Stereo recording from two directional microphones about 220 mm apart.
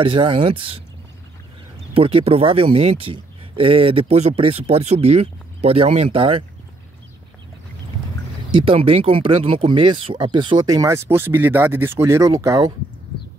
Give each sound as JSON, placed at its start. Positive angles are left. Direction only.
{"t": 0.0, "sound": "speech", "side_deg": -25}
{"t": 2.0, "sound": "speech", "side_deg": -25}
{"t": 8.5, "sound": "speech", "side_deg": -25}